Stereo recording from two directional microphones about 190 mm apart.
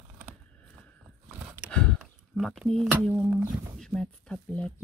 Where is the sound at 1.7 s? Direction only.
5° left (ahead or behind).